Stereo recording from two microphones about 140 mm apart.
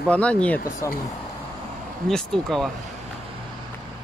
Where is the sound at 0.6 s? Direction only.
90° left.